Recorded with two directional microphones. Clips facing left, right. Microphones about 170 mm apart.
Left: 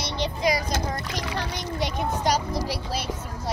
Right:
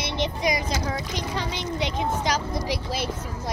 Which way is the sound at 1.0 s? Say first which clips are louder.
Right 1 dB; 65° left (ahead or behind).